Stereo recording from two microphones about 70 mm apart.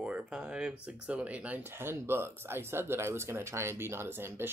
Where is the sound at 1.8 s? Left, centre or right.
Right.